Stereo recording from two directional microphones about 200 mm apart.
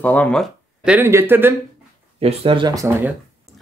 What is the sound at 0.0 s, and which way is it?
Speech, 10° left (ahead or behind).